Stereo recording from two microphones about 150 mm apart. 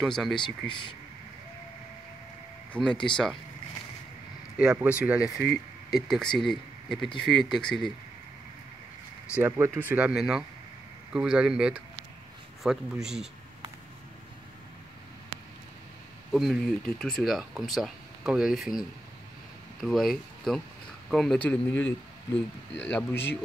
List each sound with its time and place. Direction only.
0.0 s speech: centre (ahead or behind)
0.4 s speech: 30° left (ahead or behind)
2.7 s speech: 5° left (ahead or behind)
4.8 s speech: 10° right (ahead or behind)
9.3 s speech: 15° right (ahead or behind)
16.3 s speech: centre (ahead or behind)